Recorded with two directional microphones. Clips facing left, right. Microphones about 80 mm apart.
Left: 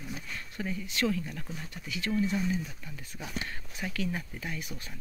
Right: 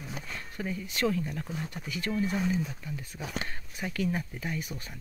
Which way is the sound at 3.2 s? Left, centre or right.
Right.